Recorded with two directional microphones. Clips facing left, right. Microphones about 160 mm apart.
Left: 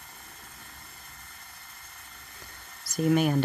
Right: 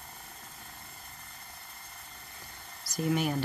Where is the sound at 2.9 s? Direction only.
55° left (ahead or behind).